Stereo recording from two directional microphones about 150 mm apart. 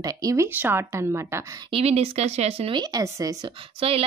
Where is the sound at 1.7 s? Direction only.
40° right (ahead or behind); by 3.3 s 25° right (ahead or behind).